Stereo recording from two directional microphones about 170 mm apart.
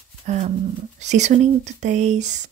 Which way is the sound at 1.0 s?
45° right (ahead or behind).